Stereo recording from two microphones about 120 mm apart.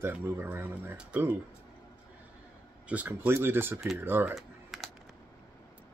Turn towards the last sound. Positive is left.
turn(degrees=0)  # may be behind; listen again after turning